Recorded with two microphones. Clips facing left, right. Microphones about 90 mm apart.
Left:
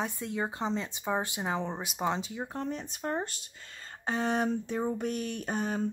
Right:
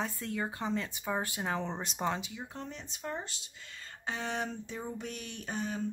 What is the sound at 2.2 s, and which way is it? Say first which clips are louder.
Speech: left 6 dB; 40° left (ahead or behind).